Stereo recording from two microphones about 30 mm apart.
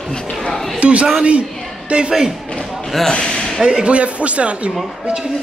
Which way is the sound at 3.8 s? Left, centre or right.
Right.